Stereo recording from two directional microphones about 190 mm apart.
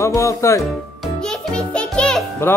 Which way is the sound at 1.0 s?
5° left (ahead or behind).